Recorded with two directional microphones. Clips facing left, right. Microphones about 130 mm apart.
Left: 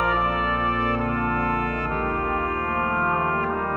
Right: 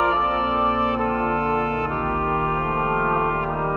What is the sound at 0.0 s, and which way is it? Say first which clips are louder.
Brass instrument: right 2 dB; 25° right (ahead or behind).